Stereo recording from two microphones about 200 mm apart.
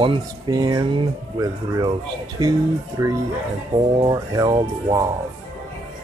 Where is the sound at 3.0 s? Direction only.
15° right (ahead or behind).